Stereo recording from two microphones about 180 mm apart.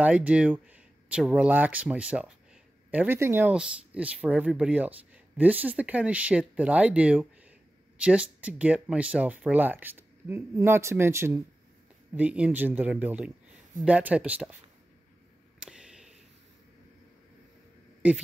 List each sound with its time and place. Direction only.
0.0 s speech: 5° right (ahead or behind)
15.6 s a sound: 5° right (ahead or behind)
18.0 s speech: 5° right (ahead or behind)